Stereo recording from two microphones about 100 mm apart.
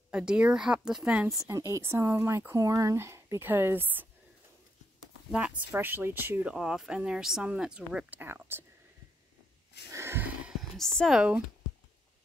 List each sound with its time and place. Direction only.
0.1 s speech: 10° right (ahead or behind)
1.7 s speech: 25° right (ahead or behind)
5.3 s speech: 15° right (ahead or behind)
6.5 s speech: 5° right (ahead or behind); by 8.6 s 20° right (ahead or behind)
9.9 s a sound: 25° right (ahead or behind)
10.6 s a sound: 5° left (ahead or behind)
11.1 s speech: 10° right (ahead or behind)